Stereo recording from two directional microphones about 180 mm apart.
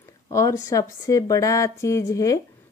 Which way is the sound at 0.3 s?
15° left (ahead or behind).